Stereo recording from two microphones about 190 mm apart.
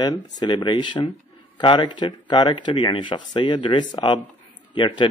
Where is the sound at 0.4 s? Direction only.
20° left (ahead or behind).